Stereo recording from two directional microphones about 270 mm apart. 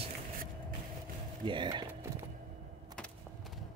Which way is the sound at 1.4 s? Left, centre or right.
Centre.